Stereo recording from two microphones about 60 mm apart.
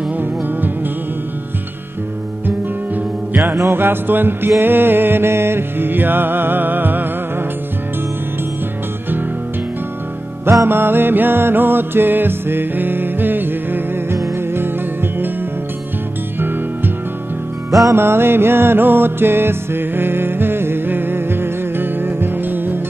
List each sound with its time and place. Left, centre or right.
3.3 s music: right
3.7 s music: right
10.7 s music: right
16.3 s music: right
17.9 s music: right